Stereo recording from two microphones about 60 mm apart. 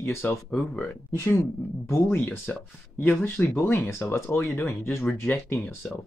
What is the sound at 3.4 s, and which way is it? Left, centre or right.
Speech, left.